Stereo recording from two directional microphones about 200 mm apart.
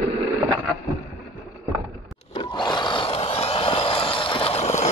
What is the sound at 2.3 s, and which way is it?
Roar, 25° left (ahead or behind).